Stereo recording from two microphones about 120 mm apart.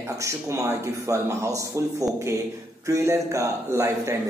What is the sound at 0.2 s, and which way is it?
A man's voice, 25° right (ahead or behind).